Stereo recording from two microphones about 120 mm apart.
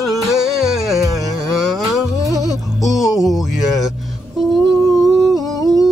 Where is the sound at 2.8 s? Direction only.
5° right (ahead or behind).